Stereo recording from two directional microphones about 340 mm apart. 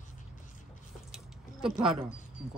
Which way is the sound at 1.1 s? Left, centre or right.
Centre.